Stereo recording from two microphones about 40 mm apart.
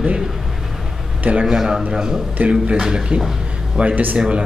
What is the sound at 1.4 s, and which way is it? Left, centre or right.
Speech, centre.